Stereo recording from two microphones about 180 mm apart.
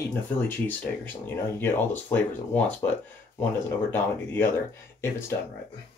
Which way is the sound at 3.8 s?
15° left (ahead or behind).